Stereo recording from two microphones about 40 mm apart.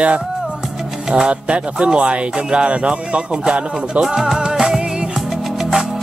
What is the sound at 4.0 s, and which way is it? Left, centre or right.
Speech, centre.